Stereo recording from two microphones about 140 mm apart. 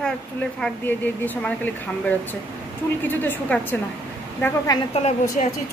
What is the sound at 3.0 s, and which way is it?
Speech, 15° left (ahead or behind).